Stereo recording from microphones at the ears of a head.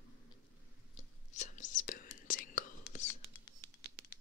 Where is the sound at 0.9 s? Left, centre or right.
Left.